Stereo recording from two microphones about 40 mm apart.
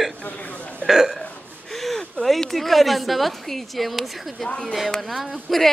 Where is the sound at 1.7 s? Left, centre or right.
Centre.